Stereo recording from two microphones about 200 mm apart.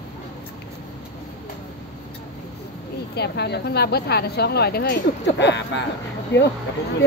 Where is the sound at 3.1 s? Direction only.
55° left (ahead or behind).